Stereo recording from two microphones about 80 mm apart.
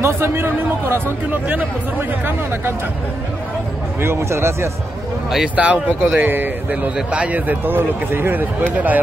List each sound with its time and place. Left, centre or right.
0.0 s speech: right
4.0 s speech: right
5.3 s speech: centre